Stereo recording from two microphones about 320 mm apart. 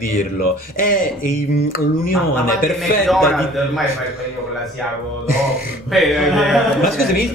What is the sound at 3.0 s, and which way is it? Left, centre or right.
Speech, centre.